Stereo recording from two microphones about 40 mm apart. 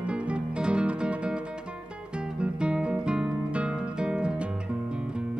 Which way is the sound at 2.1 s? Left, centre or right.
Right.